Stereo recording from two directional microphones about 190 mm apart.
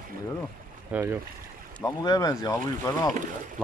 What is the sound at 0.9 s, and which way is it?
Speech, 10° right (ahead or behind).